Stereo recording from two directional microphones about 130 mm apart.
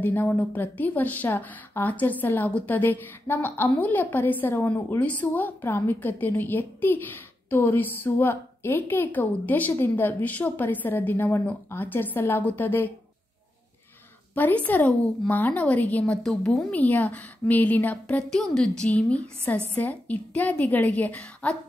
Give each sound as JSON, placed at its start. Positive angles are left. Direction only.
{"t": 0.0, "sound": "a woman's voice", "side_deg": 15}
{"t": 14.3, "sound": "a woman's voice", "side_deg": 15}